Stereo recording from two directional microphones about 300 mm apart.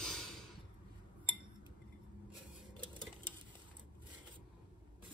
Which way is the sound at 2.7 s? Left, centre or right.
Centre.